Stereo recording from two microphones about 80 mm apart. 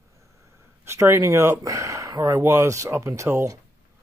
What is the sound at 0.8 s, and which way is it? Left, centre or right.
Speech, right.